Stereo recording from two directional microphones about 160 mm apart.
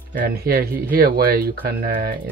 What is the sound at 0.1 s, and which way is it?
Speech, 70° right (ahead or behind).